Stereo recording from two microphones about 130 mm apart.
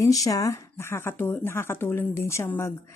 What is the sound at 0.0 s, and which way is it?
A woman's voice, 25° left (ahead or behind).